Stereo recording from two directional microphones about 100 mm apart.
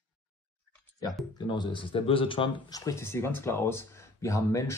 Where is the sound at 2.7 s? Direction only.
35° left (ahead or behind).